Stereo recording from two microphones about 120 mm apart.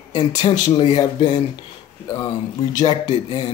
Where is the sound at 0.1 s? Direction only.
35° left (ahead or behind).